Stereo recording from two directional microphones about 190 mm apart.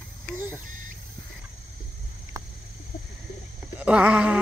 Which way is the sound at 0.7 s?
45° right (ahead or behind).